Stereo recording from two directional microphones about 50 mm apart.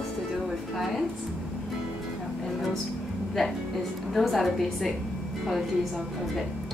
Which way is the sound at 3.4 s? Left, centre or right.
Centre.